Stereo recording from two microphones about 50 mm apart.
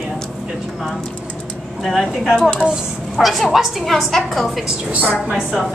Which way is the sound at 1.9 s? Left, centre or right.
Centre.